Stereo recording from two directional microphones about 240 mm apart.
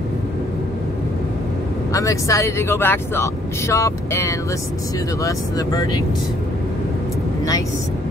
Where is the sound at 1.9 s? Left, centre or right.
Centre.